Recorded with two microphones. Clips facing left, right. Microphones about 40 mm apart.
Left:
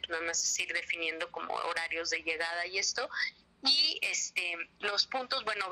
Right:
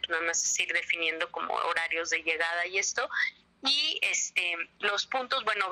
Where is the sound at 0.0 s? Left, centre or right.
Right.